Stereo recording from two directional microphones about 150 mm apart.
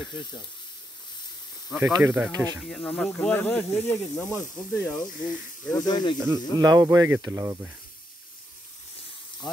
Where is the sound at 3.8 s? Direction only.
15° left (ahead or behind).